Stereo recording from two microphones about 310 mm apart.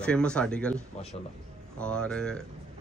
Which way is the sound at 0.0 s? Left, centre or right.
Centre.